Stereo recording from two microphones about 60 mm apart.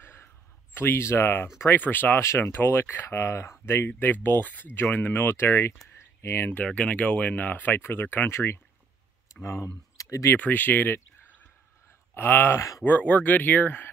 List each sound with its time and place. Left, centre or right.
0.0 s a sound: left
0.7 s speech: left
2.2 s speech: left
4.0 s speech: left
5.9 s a sound: left
6.6 s speech: left
8.3 s speech: left
9.9 s a sound: left
10.3 s speech: left
12.5 s speech: left
12.8 s speech: left